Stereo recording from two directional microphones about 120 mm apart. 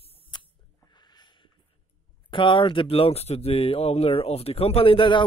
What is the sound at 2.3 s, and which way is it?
Speech, 45° left (ahead or behind).